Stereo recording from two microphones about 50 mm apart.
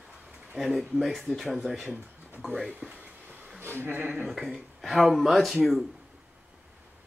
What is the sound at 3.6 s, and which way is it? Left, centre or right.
Speech, right.